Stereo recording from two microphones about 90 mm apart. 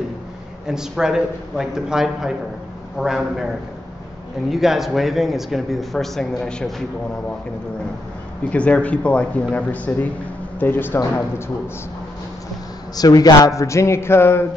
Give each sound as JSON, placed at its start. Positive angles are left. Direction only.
{"t": 0.7, "sound": "speech", "side_deg": -5}
{"t": 4.5, "sound": "speech", "side_deg": -5}
{"t": 8.5, "sound": "a man's voice", "side_deg": 15}
{"t": 12.9, "sound": "a man's voice", "side_deg": 45}